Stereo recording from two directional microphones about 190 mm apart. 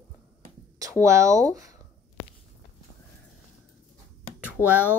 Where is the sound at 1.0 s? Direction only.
15° right (ahead or behind).